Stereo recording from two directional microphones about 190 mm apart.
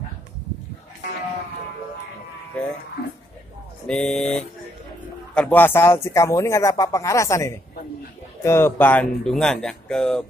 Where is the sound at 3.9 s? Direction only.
5° left (ahead or behind).